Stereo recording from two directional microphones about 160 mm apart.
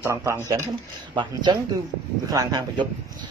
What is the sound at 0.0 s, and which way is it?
A man's voice, 20° right (ahead or behind).